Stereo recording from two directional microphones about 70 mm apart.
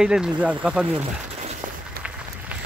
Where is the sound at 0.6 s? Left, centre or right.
Centre.